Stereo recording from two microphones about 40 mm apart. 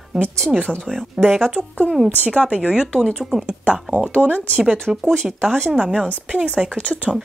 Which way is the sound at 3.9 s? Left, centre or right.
Right.